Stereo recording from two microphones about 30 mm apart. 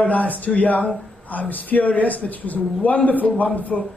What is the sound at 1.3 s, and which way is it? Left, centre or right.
A man's voice, left.